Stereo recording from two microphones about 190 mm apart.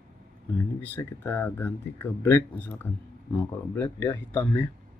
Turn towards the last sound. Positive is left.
turn(degrees=10)  # may be behind; listen again after turning